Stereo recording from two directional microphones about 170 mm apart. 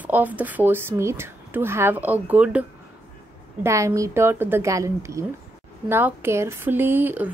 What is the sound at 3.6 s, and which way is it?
Speech, 20° right (ahead or behind).